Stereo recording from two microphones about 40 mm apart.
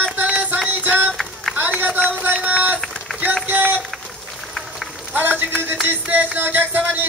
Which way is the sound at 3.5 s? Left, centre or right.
Right.